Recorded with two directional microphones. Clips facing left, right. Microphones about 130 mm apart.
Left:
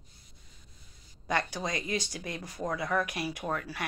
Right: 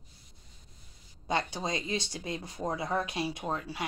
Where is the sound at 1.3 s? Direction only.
25° right (ahead or behind).